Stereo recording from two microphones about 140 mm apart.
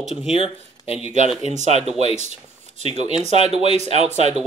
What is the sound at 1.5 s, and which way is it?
Speech, 55° right (ahead or behind).